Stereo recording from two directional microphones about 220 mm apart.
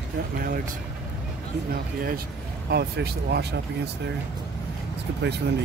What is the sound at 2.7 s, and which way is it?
Speech, 45° right (ahead or behind).